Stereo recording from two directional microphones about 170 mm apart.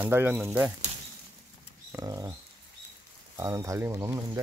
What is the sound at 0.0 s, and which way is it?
Speech, 10° right (ahead or behind).